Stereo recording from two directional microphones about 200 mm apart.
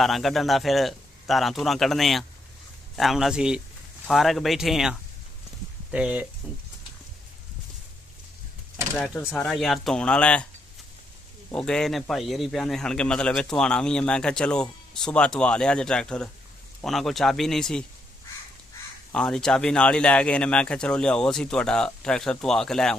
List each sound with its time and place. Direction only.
0.0 s a man's voice: centre (ahead or behind)
8.9 s a man's voice: centre (ahead or behind)
11.5 s a man's voice: 5° left (ahead or behind)
19.1 s a man's voice: 5° left (ahead or behind)